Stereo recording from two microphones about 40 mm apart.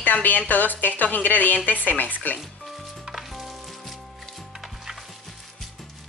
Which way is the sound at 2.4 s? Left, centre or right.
Centre.